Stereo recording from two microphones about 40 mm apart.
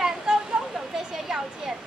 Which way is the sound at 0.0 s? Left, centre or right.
Centre.